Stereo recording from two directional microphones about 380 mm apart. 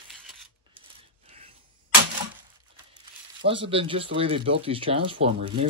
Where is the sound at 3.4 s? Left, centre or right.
Centre.